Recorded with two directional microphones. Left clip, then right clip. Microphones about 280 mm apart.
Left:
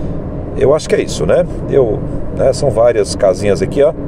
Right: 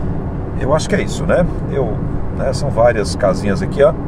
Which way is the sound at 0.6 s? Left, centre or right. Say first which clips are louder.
Left 5 dB; left.